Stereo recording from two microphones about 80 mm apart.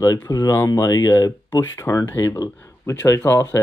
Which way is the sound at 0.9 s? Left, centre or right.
Left.